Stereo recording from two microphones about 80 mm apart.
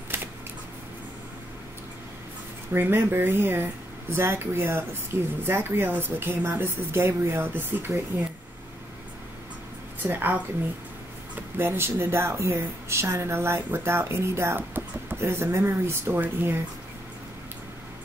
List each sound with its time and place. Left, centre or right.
0.1 s a sound: right
2.7 s a woman's voice: right
10.0 s a woman's voice: right